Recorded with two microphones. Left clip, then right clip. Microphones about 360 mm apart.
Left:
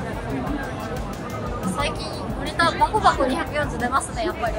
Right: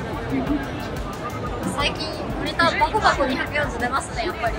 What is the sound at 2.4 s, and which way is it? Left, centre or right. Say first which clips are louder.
Speech: even; centre.